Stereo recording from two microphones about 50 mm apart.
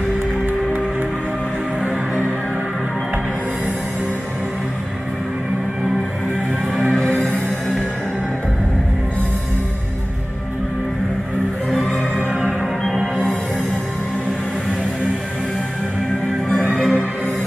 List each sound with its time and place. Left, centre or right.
6.9 s music: centre
12.4 s music: centre
16.7 s music: centre